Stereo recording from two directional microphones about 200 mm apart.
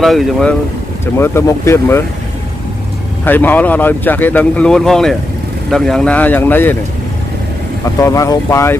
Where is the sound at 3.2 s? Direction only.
10° left (ahead or behind).